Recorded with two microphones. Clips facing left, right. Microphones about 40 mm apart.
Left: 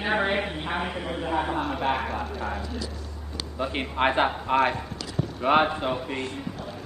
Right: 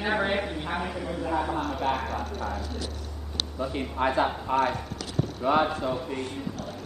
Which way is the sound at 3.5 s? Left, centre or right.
Left.